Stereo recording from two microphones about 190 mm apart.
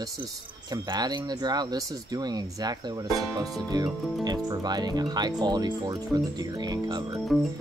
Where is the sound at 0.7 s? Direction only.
20° right (ahead or behind).